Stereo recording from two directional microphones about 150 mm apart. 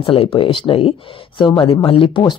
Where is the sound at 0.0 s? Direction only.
40° left (ahead or behind).